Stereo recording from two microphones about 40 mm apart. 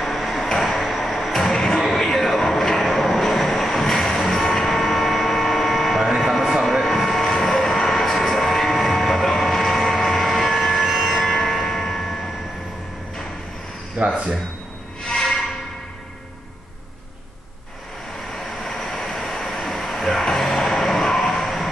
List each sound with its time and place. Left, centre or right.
0.0 s music: centre
2.0 s vehicle: centre
11.0 s train: centre
13.9 s a sound: right
18.6 s vehicle: centre
21.3 s music: centre